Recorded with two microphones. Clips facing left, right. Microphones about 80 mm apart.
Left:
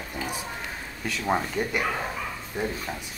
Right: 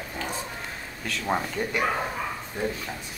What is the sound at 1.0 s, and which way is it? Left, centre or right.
Speech, centre.